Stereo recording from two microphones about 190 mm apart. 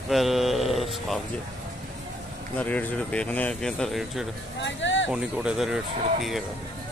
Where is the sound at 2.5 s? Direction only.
5° left (ahead or behind).